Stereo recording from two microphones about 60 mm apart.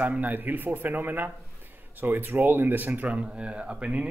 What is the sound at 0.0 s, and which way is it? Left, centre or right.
Speech, right.